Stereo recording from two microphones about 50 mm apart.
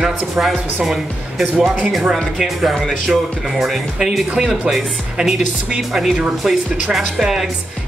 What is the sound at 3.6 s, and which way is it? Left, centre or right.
Speech, centre.